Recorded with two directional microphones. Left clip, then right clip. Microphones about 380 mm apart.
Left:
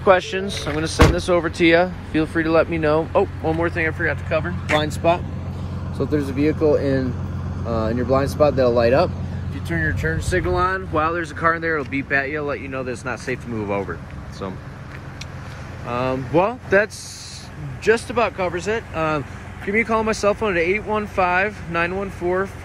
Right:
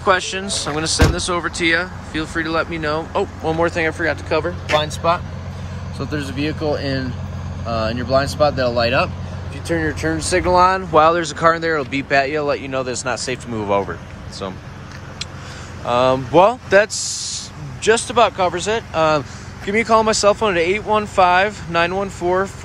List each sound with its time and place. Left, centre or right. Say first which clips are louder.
0.0 s speech: left 1 dB; centre
4.7 s speech: right 1 dB; right
5.9 s speech: left 3 dB; right
8.1 s speech: right 1 dB; right
9.7 s speech: right 3 dB; centre
15.9 s speech: right 7 dB; centre